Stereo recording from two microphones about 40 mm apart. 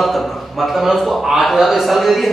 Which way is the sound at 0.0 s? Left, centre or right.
Centre.